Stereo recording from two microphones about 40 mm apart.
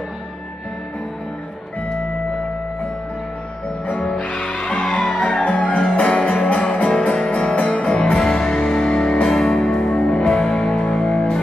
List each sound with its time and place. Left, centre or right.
3.8 s music: left
4.5 s music: left
5.2 s music: left
5.8 s music: centre
9.9 s music: left